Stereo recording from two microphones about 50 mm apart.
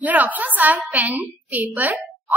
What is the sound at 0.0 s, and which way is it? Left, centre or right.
A woman's voice, right.